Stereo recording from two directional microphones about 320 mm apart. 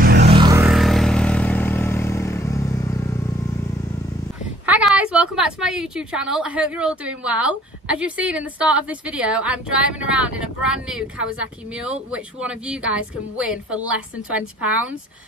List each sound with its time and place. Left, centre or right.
0.0 s a sound: right
0.3 s vehicle: centre
4.6 s a woman's voice: centre